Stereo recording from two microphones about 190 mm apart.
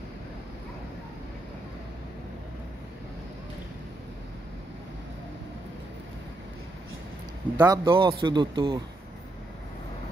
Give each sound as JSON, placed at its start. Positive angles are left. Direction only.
{"t": 7.5, "sound": "a man's voice", "side_deg": -20}